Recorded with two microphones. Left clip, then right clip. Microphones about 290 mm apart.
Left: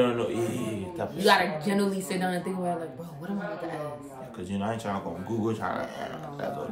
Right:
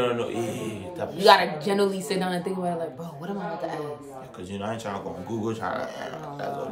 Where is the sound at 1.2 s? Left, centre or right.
Centre.